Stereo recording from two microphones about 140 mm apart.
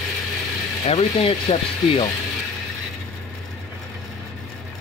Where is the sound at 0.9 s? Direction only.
45° left (ahead or behind).